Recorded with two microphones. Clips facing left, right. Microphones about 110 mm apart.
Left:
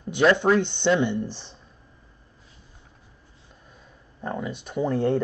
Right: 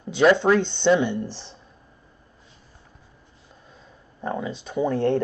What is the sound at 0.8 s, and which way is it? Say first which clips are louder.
Speech: right 3 dB; centre (ahead or behind).